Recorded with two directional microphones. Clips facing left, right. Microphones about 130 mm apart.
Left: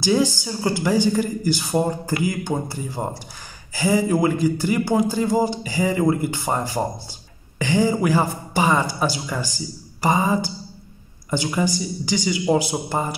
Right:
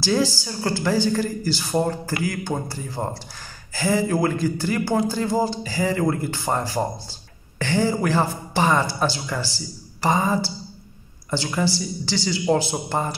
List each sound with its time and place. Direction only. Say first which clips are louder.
0.0 s a man's voice: left 2 dB; 15° left (ahead or behind)